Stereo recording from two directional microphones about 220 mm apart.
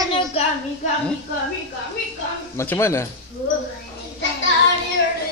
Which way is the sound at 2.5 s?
10° left (ahead or behind).